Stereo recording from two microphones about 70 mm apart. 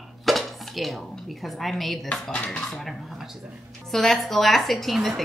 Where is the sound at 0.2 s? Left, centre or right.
Centre.